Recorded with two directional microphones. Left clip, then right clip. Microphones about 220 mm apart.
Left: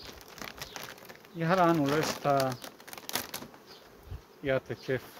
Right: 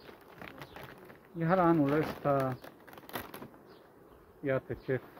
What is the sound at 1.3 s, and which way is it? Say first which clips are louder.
Speech: left 2 dB; 20° left (ahead or behind).